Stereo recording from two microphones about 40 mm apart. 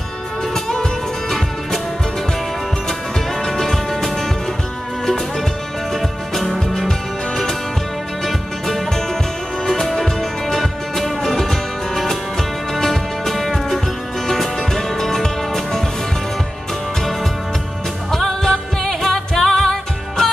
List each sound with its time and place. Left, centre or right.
3.4 s music: centre
5.9 s music: centre
8.3 s music: centre
18.1 s music: centre